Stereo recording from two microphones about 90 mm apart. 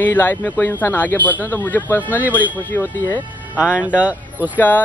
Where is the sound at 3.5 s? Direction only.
15° right (ahead or behind).